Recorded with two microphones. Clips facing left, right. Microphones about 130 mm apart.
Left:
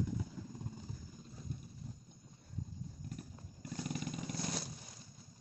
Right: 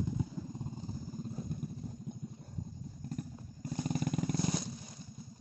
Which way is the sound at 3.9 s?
45° right (ahead or behind).